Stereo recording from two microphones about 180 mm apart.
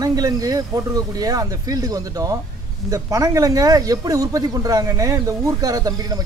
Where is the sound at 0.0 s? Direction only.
20° right (ahead or behind).